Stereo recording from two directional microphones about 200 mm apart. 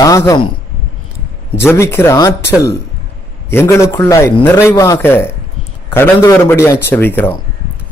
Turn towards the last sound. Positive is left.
turn(degrees=10)  # may be behind; listen again after turning